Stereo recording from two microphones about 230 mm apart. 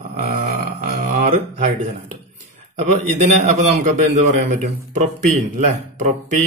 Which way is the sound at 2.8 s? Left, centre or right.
Right.